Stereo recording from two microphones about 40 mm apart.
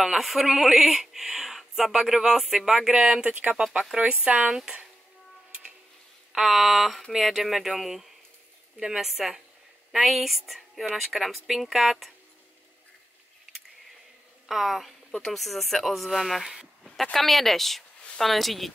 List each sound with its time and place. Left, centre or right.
0.0 s speech: centre
2.9 s speech: right
4.5 s speech: centre
6.3 s a woman's voice: centre
9.0 s speech: centre
14.5 s speech: centre
16.8 s speech: centre